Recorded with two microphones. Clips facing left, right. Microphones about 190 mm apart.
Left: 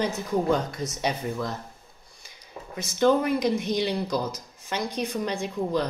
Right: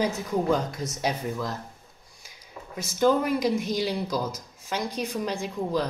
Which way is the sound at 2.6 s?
35° left (ahead or behind).